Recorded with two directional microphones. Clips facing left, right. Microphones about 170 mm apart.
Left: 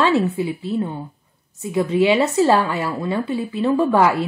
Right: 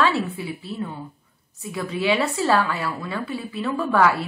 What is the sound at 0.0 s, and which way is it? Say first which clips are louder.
A woman's voice: left 5 dB; 20° left (ahead or behind).